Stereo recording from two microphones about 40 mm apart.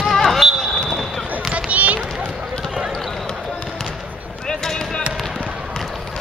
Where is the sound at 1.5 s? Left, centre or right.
Right.